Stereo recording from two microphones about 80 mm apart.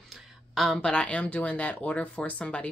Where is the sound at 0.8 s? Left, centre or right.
Centre.